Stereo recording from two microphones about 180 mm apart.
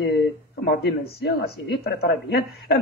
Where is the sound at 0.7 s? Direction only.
65° left (ahead or behind).